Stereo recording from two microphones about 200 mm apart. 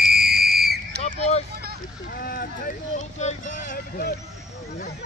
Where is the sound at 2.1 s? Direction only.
50° left (ahead or behind).